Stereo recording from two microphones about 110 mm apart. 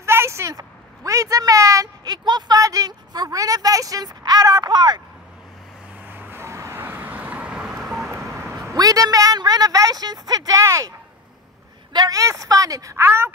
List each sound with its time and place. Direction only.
0.0 s a woman's voice: 25° right (ahead or behind); by 5.0 s 40° right (ahead or behind)
6.0 s vehicle: 20° right (ahead or behind); by 8.1 s centre (ahead or behind)
8.1 s vehicle: 25° right (ahead or behind)
8.5 s a woman's voice: 35° right (ahead or behind)
11.9 s a woman's voice: 35° right (ahead or behind)